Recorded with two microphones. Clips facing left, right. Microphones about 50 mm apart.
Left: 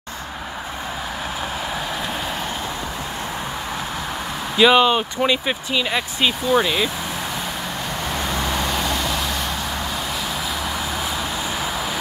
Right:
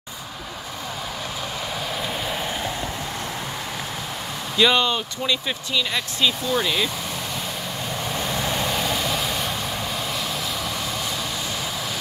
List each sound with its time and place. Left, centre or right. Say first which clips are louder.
4.6 s speech: left 5 dB; centre
4.9 s speech: left 5 dB; left
8.4 s vehicle: left 1 dB; centre